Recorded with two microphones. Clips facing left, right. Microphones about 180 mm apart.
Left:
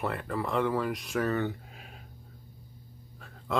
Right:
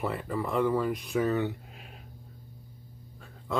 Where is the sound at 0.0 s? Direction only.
Centre (ahead or behind).